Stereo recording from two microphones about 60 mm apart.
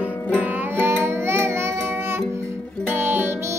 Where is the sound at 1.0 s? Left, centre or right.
Right.